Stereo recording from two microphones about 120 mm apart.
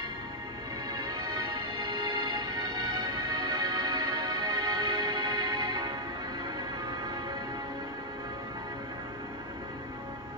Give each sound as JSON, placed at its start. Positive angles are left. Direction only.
{"t": 0.9, "sound": "music", "side_deg": -35}